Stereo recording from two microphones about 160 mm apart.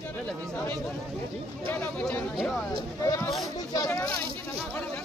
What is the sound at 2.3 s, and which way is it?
Chatter, centre (ahead or behind).